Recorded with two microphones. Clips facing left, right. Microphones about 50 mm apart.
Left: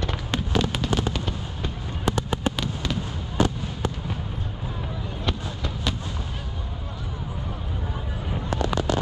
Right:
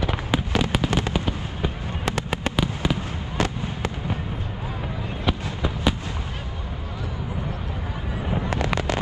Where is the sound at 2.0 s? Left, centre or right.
Right.